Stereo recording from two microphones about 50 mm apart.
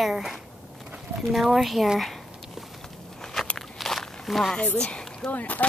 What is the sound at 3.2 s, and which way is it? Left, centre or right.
Walk, centre.